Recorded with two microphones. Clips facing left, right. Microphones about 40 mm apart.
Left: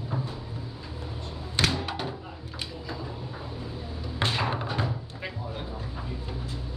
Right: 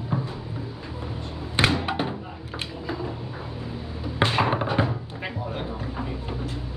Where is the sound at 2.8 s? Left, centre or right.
Right.